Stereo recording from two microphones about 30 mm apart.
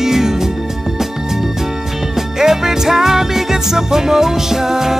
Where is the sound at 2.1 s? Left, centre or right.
Centre.